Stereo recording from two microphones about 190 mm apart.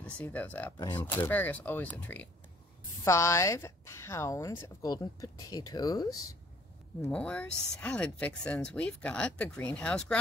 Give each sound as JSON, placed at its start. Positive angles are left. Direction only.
{"t": 0.0, "sound": "a woman's voice", "side_deg": 10}
{"t": 7.0, "sound": "speech", "side_deg": 5}